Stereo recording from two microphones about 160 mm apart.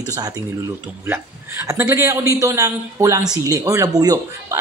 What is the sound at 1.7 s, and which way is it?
Speech, 20° right (ahead or behind).